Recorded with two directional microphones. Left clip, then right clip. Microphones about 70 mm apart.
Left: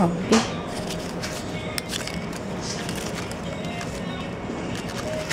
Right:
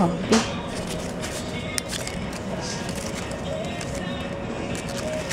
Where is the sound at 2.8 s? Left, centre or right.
Centre.